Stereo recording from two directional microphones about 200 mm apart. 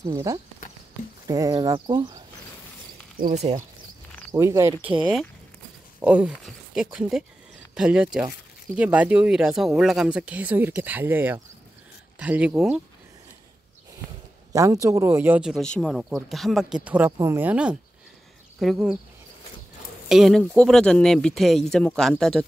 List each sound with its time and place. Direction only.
0.0 s speech: 15° right (ahead or behind)
3.2 s speech: 45° right (ahead or behind)
4.3 s speech: 15° right (ahead or behind)
5.9 s speech: 5° right (ahead or behind)
14.5 s speech: 15° right (ahead or behind)
20.1 s speech: centre (ahead or behind)